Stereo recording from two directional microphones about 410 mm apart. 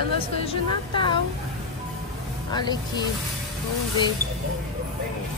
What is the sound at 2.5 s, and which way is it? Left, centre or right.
Speech, centre.